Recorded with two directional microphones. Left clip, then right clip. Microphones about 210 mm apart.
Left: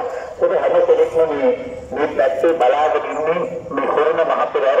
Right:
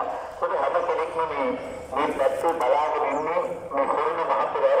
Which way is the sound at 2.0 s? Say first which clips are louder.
Left 6 dB; 50° left (ahead or behind).